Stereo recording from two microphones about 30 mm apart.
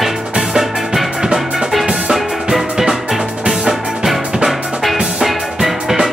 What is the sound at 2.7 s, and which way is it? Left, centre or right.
Music, right.